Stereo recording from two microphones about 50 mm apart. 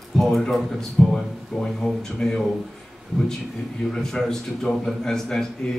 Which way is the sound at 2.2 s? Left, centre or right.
Centre.